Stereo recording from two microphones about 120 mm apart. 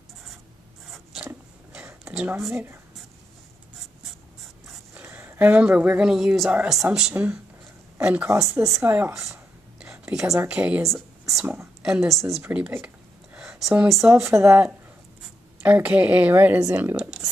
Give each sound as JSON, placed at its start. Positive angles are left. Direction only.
{"t": 0.8, "sound": "zipper", "side_deg": 0}
{"t": 2.5, "sound": "a woman's voice", "side_deg": -20}
{"t": 4.9, "sound": "a woman's voice", "side_deg": -15}
{"t": 8.3, "sound": "a woman's voice", "side_deg": -25}
{"t": 9.8, "sound": "a sound", "side_deg": -5}
{"t": 10.2, "sound": "a woman's voice", "side_deg": -25}
{"t": 10.5, "sound": "a woman's voice", "side_deg": -10}
{"t": 10.9, "sound": "a sound", "side_deg": 0}
{"t": 11.4, "sound": "a woman's voice", "side_deg": -20}
{"t": 11.8, "sound": "a woman's voice", "side_deg": -5}
{"t": 12.7, "sound": "a sound", "side_deg": -10}
{"t": 14.2, "sound": "a woman's voice", "side_deg": -20}